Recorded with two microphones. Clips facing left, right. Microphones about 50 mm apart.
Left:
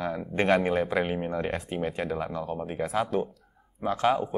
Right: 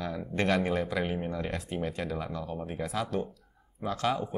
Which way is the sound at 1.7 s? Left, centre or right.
Centre.